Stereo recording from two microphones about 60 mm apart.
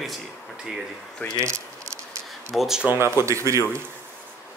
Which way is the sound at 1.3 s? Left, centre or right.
Right.